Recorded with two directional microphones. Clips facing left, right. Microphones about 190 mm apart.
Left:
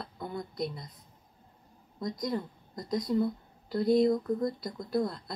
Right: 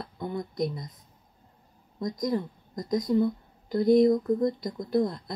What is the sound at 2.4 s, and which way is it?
A woman's voice, 20° right (ahead or behind).